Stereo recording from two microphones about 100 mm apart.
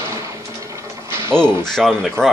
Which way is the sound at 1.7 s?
5° left (ahead or behind).